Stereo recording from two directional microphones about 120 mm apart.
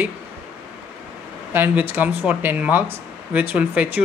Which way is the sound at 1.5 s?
15° right (ahead or behind).